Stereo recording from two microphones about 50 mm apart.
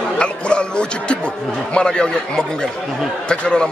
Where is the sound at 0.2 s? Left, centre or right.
Centre.